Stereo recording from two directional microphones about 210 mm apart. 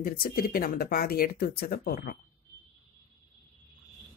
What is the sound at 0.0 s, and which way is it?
Speech, 45° left (ahead or behind).